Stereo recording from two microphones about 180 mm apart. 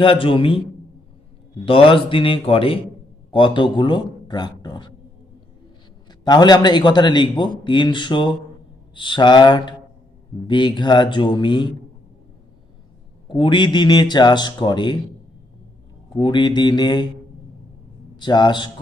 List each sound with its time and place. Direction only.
0.0 s a man's voice: 30° left (ahead or behind)
1.7 s a man's voice: 30° left (ahead or behind)
6.2 s a man's voice: 25° left (ahead or behind)
13.3 s a man's voice: 25° left (ahead or behind)
16.2 s a man's voice: 25° left (ahead or behind)
18.1 s a man's voice: 25° left (ahead or behind)